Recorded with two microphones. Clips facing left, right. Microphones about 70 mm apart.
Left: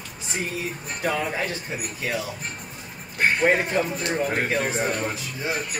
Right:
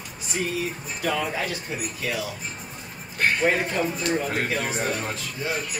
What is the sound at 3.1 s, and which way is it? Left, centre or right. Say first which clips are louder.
Speech: left 2 dB; left.